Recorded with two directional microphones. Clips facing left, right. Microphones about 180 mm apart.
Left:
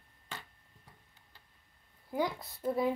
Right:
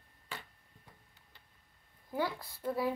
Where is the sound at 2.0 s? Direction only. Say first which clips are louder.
Left 2 dB; 15° left (ahead or behind).